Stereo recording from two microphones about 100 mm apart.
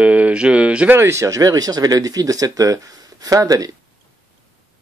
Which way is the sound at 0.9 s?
25° right (ahead or behind).